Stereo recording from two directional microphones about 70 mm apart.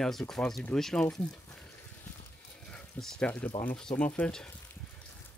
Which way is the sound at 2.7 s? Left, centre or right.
Centre.